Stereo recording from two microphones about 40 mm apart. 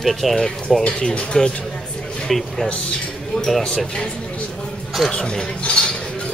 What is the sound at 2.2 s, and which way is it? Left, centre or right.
Speech, centre.